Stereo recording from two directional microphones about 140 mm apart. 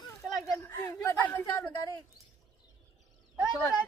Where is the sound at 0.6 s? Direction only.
20° left (ahead or behind).